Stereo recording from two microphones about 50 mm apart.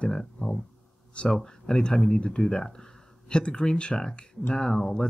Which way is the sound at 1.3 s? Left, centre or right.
Centre.